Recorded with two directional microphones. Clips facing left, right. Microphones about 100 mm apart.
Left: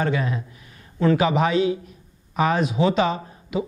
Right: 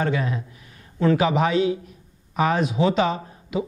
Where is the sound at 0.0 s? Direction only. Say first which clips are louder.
Even; 15° left (ahead or behind).